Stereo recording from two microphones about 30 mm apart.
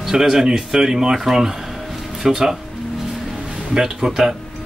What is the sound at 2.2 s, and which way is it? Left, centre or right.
Speech, centre.